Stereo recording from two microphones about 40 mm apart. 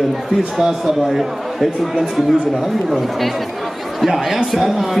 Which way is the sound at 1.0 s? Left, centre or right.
Centre.